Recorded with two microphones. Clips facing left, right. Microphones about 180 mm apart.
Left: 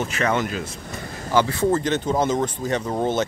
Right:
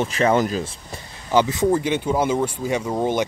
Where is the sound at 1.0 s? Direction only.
45° left (ahead or behind).